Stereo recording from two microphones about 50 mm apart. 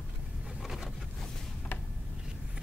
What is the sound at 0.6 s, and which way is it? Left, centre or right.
Boat, centre.